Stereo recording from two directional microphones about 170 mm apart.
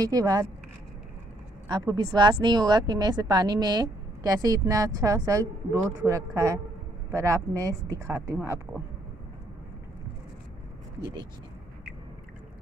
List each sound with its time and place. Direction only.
0.0 s a woman's voice: 20° right (ahead or behind)
1.7 s a woman's voice: 25° right (ahead or behind)